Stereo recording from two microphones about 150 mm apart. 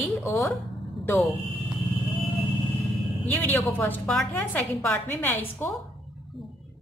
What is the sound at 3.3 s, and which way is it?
Speech, 10° left (ahead or behind).